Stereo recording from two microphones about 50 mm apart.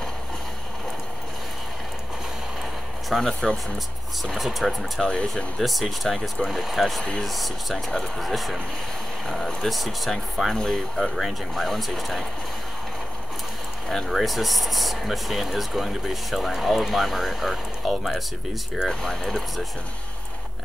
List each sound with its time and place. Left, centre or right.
3.1 s speech: centre
5.0 s speech: centre
5.6 s speech: centre
13.8 s speech: centre
18.9 s speech: centre